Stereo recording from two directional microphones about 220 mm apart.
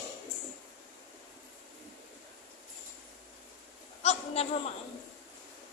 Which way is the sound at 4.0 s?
30° left (ahead or behind).